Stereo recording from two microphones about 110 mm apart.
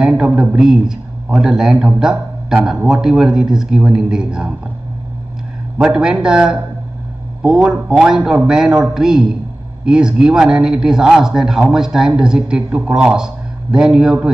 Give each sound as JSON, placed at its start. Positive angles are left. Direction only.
{"t": 0.0, "sound": "a man's voice", "side_deg": -5}
{"t": 5.8, "sound": "a man's voice", "side_deg": -10}